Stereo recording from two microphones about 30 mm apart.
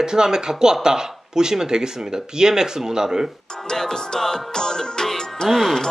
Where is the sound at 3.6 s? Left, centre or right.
Left.